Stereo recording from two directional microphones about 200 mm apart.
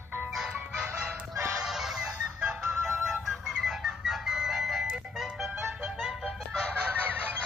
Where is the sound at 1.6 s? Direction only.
Centre (ahead or behind).